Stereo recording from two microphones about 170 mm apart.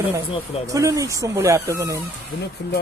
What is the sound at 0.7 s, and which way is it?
Speech, 20° right (ahead or behind).